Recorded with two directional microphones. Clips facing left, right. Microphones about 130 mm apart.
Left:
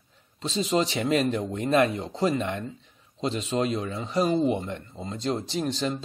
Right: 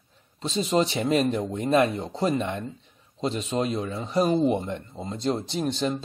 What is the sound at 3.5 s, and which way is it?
Speech, 10° right (ahead or behind).